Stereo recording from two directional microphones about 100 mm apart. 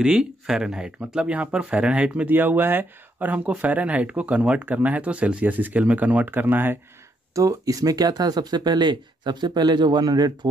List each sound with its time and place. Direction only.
0.0 s speech: 10° right (ahead or behind)
7.3 s speech: 35° right (ahead or behind)